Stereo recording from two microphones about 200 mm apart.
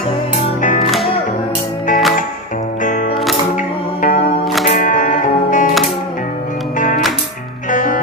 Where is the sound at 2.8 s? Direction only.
40° left (ahead or behind).